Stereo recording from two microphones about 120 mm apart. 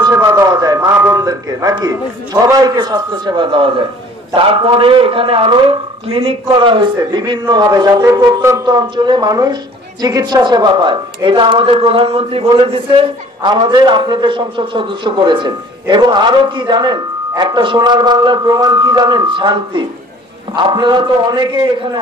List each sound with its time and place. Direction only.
0.1 s a woman's voice: 25° right (ahead or behind)